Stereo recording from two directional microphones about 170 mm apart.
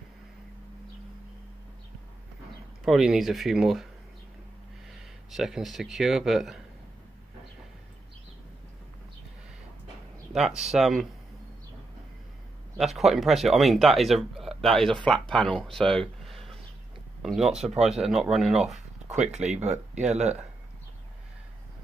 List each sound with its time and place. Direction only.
2.8 s speech: centre (ahead or behind)
5.3 s speech: centre (ahead or behind)
10.3 s speech: centre (ahead or behind)
12.7 s speech: centre (ahead or behind)
19.3 s speech: 40° right (ahead or behind)